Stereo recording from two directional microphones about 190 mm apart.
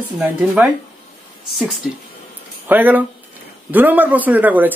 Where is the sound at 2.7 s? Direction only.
10° right (ahead or behind).